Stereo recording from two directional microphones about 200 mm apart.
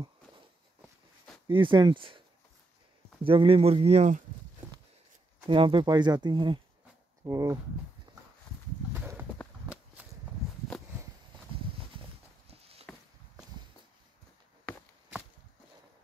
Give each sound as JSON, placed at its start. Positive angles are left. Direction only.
{"t": 1.5, "sound": "speech", "side_deg": -25}
{"t": 3.3, "sound": "speech", "side_deg": -25}
{"t": 5.5, "sound": "speech", "side_deg": -25}
{"t": 12.4, "sound": "a sound", "side_deg": -30}